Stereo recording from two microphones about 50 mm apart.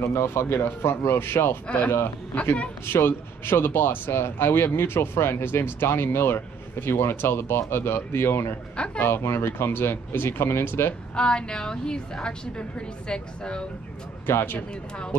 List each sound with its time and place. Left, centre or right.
0.1 s speech: left
2.9 s speech: left
8.7 s speech: left
9.0 s speech: left
11.1 s a woman's voice: centre
14.2 s speech: left
14.7 s a woman's voice: centre